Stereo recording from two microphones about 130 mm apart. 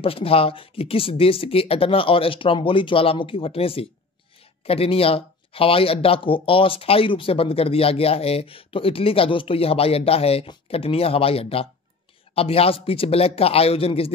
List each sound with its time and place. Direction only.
0.0 s speech: 45° left (ahead or behind)